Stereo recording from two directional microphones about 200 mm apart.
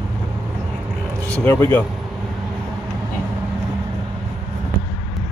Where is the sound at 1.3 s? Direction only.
10° left (ahead or behind).